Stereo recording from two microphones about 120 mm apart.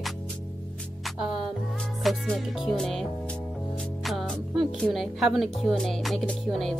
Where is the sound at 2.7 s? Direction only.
Centre (ahead or behind).